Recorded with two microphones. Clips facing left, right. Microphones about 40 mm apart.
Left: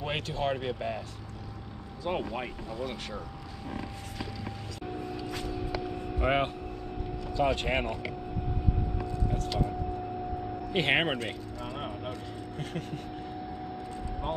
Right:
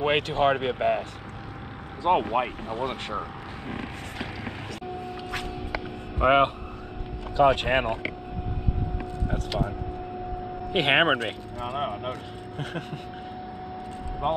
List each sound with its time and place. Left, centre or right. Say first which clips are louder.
0.0 s speech: right 9 dB; right
2.0 s speech: right 10 dB; right
6.1 s speech: right 8 dB; right
8.9 s vehicle: right 2 dB; right
10.7 s speech: right 6 dB; right
14.2 s speech: right 8 dB; right